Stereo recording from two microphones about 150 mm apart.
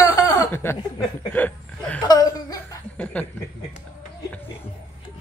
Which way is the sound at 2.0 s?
25° left (ahead or behind).